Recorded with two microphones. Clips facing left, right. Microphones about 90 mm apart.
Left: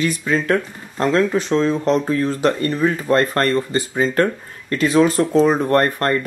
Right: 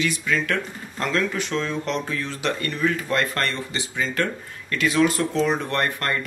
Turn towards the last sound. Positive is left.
turn(degrees=35)  # may be behind; listen again after turning